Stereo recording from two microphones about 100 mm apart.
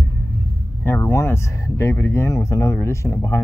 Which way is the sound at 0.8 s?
25° left (ahead or behind).